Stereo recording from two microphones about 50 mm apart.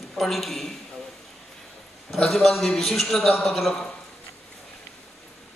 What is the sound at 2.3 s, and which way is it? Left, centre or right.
A man's voice, centre.